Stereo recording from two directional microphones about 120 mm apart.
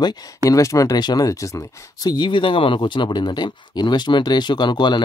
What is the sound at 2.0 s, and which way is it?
Speech, 40° left (ahead or behind).